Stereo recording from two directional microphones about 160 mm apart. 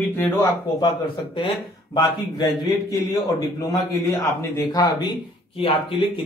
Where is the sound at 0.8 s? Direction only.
25° left (ahead or behind).